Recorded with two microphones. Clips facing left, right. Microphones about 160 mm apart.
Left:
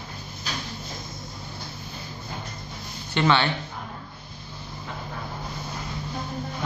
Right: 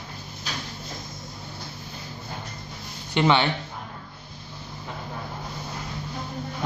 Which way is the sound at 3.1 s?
15° right (ahead or behind).